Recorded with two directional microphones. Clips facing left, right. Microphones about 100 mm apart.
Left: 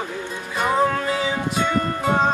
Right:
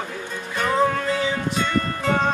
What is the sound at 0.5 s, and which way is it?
Music, 10° left (ahead or behind).